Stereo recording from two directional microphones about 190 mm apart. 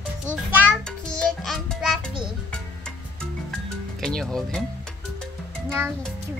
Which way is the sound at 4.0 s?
5° left (ahead or behind).